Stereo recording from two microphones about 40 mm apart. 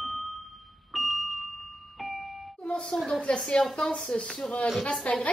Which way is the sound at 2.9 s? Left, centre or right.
Centre.